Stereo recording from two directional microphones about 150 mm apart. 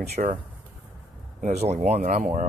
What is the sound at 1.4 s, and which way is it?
Speech, 50° right (ahead or behind).